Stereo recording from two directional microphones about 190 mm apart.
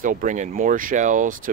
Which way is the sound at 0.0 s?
45° right (ahead or behind).